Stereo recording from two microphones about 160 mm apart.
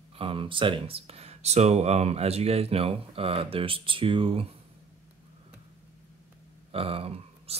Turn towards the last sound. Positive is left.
turn(degrees=-40)  # may be behind; listen again after turning